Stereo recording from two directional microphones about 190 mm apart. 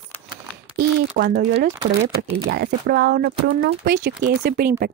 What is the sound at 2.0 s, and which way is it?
Speech, 40° right (ahead or behind).